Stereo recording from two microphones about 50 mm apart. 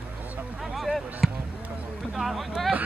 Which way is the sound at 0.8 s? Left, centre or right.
Centre.